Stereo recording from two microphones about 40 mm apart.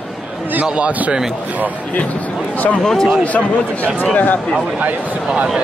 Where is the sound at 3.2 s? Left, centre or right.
Left.